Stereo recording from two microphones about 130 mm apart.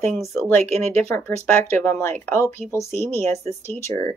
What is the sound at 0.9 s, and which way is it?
Speech, 15° left (ahead or behind).